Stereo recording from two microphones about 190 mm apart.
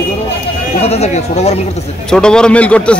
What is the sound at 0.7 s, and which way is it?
Speech, 35° left (ahead or behind).